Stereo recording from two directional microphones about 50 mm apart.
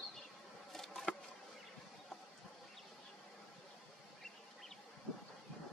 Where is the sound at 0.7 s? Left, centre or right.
Centre.